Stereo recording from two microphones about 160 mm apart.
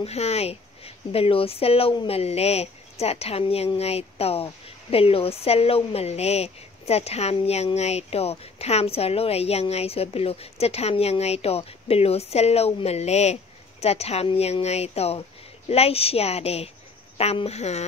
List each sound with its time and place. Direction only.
0.0 s speech: 40° left (ahead or behind)